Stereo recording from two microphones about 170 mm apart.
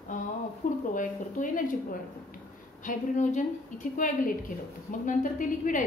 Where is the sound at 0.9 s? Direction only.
50° left (ahead or behind).